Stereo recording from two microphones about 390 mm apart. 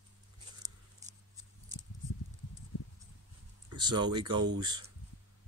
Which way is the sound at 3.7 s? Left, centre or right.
Centre.